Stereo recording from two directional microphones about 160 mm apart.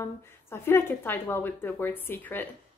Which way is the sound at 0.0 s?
15° left (ahead or behind).